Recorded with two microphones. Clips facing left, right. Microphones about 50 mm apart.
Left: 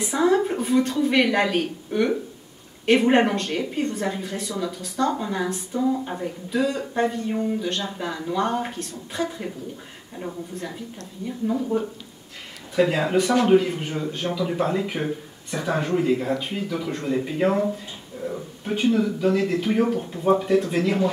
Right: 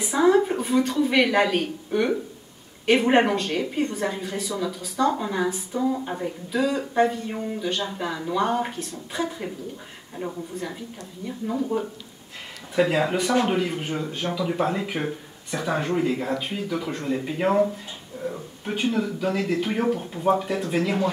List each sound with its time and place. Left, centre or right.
0.0 s speech: centre
12.8 s speech: centre